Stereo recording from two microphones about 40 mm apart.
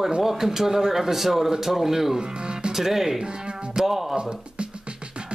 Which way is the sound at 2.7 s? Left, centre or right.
Centre.